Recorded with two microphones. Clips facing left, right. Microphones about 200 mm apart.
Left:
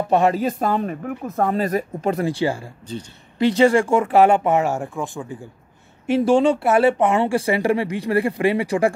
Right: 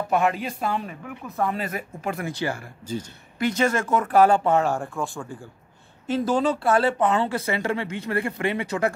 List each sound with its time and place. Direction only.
0.1 s speech: 35° left (ahead or behind)